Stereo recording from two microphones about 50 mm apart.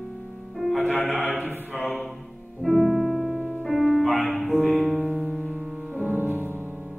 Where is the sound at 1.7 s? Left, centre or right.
Centre.